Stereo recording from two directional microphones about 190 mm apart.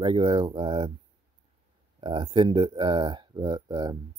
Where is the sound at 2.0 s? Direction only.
25° right (ahead or behind).